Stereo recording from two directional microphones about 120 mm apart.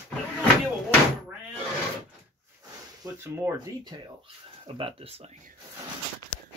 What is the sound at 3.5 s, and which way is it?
Speech, 35° right (ahead or behind).